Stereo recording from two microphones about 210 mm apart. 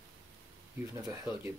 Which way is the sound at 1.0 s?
15° right (ahead or behind).